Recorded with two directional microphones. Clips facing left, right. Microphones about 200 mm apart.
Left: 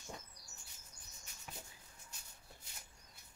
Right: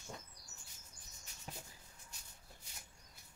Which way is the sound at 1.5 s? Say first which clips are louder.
Right 2 dB; 35° right (ahead or behind).